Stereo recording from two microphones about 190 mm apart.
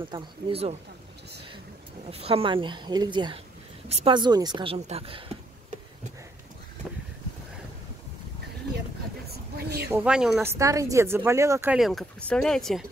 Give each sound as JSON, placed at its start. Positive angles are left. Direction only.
{"t": 0.0, "sound": "speech", "side_deg": -30}
{"t": 2.0, "sound": "a woman's voice", "side_deg": -30}
{"t": 4.7, "sound": "speech", "side_deg": -35}
{"t": 9.3, "sound": "a sound", "side_deg": -55}
{"t": 9.8, "sound": "speech", "side_deg": -10}
{"t": 11.7, "sound": "speech", "side_deg": 0}